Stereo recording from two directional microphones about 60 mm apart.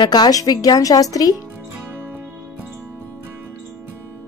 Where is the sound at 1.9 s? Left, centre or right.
Right.